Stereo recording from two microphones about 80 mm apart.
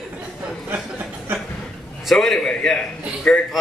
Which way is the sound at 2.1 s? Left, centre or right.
Centre.